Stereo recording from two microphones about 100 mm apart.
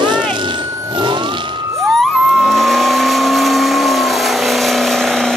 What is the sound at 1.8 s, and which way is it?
Vehicle, centre (ahead or behind).